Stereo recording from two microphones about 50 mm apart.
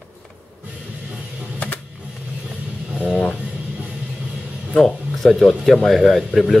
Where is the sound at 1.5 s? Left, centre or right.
Left.